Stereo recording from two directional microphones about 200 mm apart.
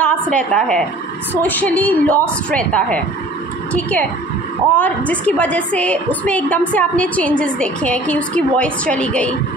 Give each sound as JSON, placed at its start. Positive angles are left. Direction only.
{"t": 0.0, "sound": "a woman's voice", "side_deg": 5}
{"t": 4.7, "sound": "a woman's voice", "side_deg": 5}